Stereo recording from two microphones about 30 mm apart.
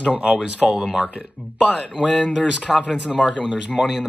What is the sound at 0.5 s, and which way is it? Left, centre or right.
Speech, right.